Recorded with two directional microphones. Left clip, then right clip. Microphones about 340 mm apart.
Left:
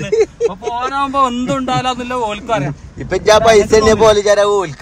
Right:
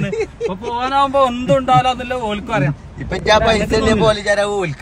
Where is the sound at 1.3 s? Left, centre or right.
Centre.